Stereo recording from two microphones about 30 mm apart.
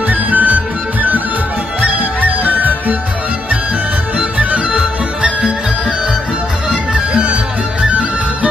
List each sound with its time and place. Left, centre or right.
0.1 s music: right
1.8 s music: right